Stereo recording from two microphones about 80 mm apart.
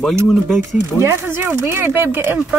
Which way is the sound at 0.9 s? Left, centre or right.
Right.